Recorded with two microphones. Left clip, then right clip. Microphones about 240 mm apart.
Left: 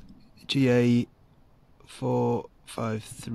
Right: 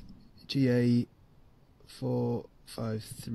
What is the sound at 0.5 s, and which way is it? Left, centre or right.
Speech, centre.